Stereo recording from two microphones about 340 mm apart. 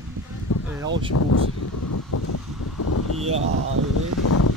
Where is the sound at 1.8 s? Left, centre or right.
Left.